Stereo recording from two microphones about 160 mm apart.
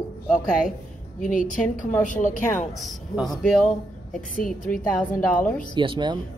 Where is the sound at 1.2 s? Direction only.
55° left (ahead or behind).